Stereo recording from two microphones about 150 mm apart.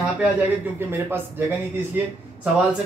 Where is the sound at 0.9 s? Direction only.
15° right (ahead or behind).